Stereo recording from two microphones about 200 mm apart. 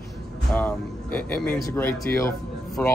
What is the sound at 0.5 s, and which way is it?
Music, 5° left (ahead or behind).